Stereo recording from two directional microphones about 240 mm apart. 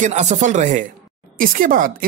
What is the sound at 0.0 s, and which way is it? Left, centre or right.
Speech, right.